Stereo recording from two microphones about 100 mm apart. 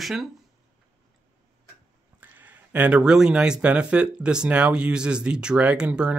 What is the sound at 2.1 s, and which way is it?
Speech, 20° right (ahead or behind).